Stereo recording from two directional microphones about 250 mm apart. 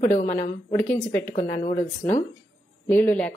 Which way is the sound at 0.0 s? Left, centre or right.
Left.